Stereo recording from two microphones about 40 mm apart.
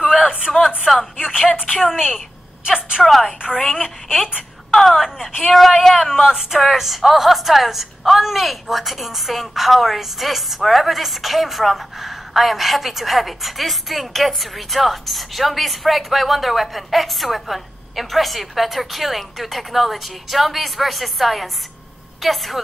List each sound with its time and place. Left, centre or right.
0.5 s speech: centre
2.6 s a woman's voice: centre
3.0 s a woman's voice: centre
3.7 s speech: centre
5.5 s a woman's voice: centre
6.0 s a woman's voice: centre